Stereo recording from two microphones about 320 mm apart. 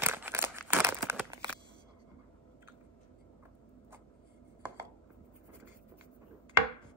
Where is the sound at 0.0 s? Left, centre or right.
Centre.